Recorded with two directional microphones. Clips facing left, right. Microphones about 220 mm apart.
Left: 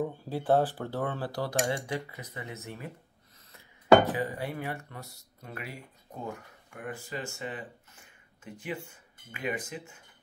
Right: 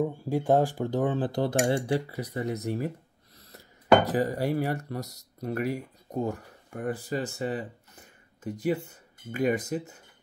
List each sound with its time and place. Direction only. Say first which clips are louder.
0.1 s speech: right 3 dB; 10° right (ahead or behind); by 9.9 s 40° right (ahead or behind)